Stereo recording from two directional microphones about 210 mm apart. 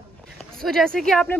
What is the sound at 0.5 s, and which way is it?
Speech, centre (ahead or behind).